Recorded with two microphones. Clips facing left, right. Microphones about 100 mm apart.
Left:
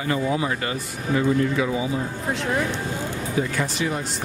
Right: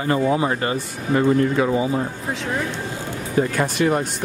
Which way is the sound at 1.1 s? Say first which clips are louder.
Right 4 dB; 45° right (ahead or behind).